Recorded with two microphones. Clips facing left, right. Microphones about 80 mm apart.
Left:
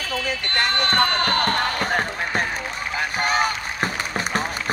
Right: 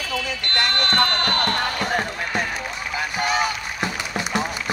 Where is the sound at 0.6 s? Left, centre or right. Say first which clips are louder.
Left 1 dB; left.